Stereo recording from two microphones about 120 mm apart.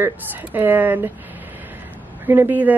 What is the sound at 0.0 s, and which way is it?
A woman's voice, 15° right (ahead or behind).